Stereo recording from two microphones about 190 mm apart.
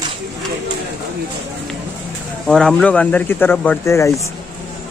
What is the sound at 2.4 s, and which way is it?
Speech, 5° left (ahead or behind).